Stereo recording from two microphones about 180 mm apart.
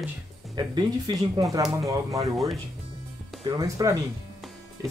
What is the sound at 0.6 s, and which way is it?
Speech, 25° right (ahead or behind).